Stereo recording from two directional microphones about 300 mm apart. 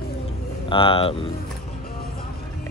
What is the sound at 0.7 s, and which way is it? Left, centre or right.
Speech, centre.